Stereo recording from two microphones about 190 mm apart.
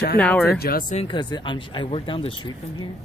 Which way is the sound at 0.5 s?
55° left (ahead or behind).